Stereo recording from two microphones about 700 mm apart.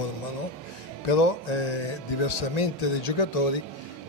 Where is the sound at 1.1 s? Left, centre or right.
Left.